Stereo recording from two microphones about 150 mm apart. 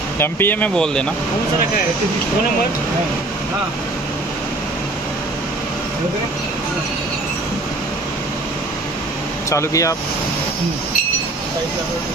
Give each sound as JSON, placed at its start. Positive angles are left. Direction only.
{"t": 0.2, "sound": "speech", "side_deg": 15}
{"t": 9.5, "sound": "speech", "side_deg": 20}